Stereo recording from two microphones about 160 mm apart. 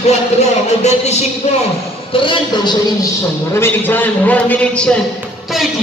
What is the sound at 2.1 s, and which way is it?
Speech, 30° left (ahead or behind).